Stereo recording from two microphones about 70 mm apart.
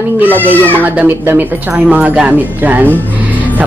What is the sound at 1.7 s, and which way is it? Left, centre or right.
Speech, centre.